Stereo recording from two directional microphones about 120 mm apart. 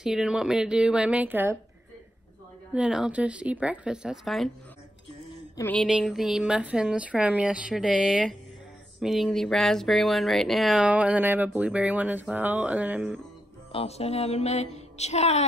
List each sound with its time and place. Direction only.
0.0 s speech: 5° right (ahead or behind)
2.7 s speech: 5° right (ahead or behind)
6.0 s speech: centre (ahead or behind)
10.9 s speech: 10° right (ahead or behind)
13.7 s a sound: 55° left (ahead or behind)